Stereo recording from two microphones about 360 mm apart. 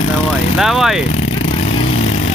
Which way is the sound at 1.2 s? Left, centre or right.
Centre.